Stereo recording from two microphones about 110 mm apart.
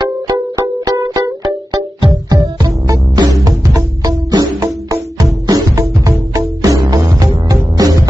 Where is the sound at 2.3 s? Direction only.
35° right (ahead or behind).